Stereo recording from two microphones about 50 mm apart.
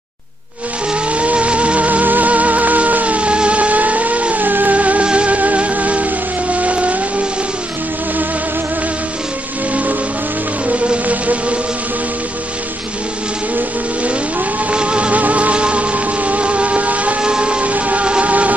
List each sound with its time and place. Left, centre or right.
1.1 s music: right
11.1 s music: right
14.7 s music: right